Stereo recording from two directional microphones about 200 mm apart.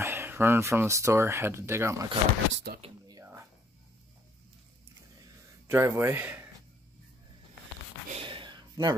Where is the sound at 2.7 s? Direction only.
55° right (ahead or behind).